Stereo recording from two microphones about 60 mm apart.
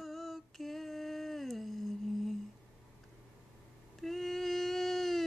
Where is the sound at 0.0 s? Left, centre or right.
Centre.